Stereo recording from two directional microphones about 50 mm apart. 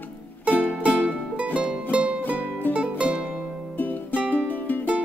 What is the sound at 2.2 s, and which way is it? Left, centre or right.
Music, left.